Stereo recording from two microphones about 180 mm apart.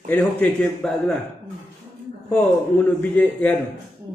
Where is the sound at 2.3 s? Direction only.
5° left (ahead or behind).